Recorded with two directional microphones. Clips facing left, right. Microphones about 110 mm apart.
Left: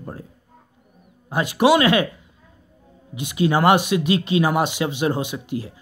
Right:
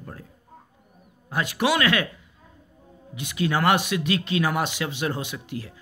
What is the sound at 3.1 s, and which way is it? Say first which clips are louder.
Speech: left 5 dB; 10° left (ahead or behind).